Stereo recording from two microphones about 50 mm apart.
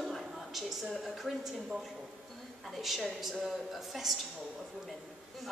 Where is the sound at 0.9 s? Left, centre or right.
Centre.